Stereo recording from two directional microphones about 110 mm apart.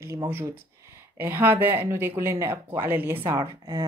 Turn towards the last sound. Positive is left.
turn(degrees=-35)  # may be behind; listen again after turning